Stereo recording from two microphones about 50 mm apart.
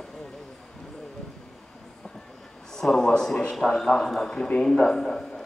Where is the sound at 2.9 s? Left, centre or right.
Centre.